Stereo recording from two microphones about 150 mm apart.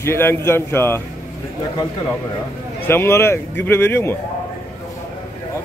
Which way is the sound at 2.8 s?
15° left (ahead or behind).